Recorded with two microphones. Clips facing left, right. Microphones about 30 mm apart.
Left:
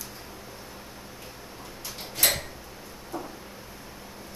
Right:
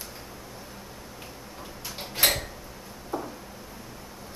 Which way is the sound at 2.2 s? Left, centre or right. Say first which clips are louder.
Right 2 dB; right.